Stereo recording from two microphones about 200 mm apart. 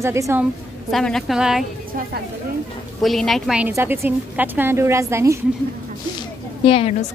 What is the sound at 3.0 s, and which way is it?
Speech, centre (ahead or behind).